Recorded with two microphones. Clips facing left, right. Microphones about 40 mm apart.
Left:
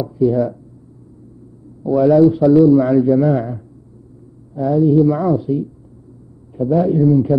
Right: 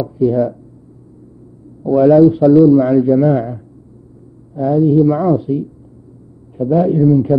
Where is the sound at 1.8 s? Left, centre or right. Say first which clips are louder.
Right 3 dB; centre.